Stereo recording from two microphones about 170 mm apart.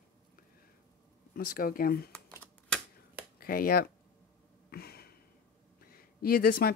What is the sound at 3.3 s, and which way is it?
Speech, 60° left (ahead or behind).